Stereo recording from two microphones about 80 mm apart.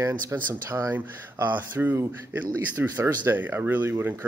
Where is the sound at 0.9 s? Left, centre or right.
Right.